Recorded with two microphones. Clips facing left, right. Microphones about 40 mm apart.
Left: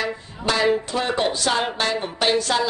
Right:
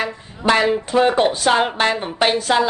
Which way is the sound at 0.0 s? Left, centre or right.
Right.